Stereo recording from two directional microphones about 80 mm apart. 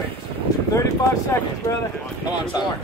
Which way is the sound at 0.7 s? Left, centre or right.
Left.